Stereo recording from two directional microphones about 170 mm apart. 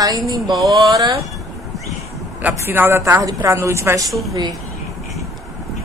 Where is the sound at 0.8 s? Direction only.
25° right (ahead or behind).